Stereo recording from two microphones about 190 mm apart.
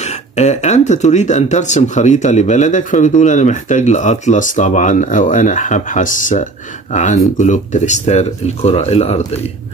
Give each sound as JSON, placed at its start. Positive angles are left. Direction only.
{"t": 0.4, "sound": "speech", "side_deg": 35}